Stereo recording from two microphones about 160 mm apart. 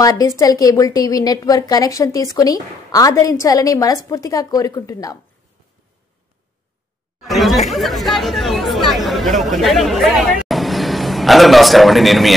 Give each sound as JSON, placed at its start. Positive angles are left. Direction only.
{"t": 0.0, "sound": "a woman's voice", "side_deg": 20}
{"t": 7.2, "sound": "speech", "side_deg": 0}